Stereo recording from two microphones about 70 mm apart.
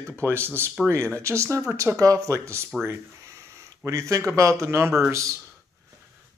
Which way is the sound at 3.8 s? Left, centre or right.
Right.